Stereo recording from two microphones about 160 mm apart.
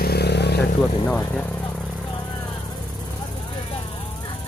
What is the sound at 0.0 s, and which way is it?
Vehicle, 85° left.